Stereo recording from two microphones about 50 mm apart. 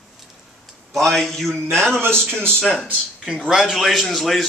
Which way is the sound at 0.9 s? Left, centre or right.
Centre.